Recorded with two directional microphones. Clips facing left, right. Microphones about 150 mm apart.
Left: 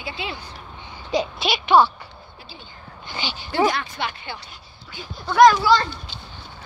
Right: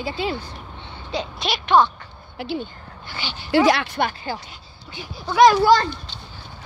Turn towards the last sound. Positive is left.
turn(degrees=-50)  # may be behind; listen again after turning